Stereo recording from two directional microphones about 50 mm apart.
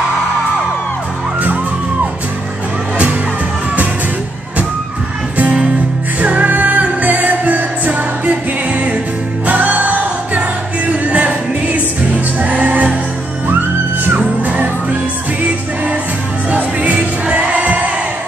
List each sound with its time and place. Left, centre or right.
5.4 s music: right
14.0 s music: right
16.4 s music: right